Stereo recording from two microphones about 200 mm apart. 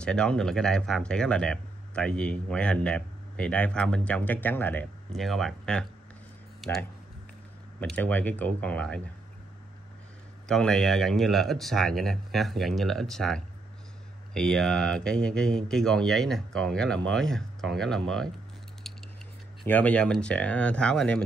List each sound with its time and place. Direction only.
0.0 s speech: 5° left (ahead or behind)
10.5 s speech: centre (ahead or behind)
19.6 s speech: 10° left (ahead or behind)